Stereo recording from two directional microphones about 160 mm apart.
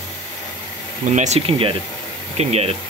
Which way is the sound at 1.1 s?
45° right (ahead or behind).